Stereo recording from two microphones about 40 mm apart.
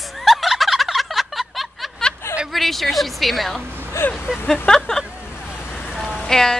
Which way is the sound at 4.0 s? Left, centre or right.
Left.